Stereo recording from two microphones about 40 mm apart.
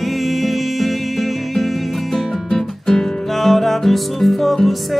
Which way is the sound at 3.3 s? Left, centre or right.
Centre.